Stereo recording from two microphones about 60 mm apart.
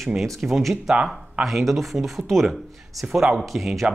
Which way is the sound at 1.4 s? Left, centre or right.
Centre.